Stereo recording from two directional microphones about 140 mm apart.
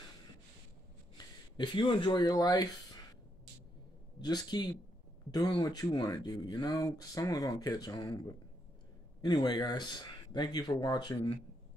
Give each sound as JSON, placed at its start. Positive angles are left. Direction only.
{"t": 1.1, "sound": "speech", "side_deg": 30}
{"t": 4.2, "sound": "speech", "side_deg": 30}